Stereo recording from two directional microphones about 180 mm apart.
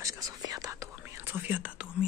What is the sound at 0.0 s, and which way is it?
Whispering, 15° right (ahead or behind).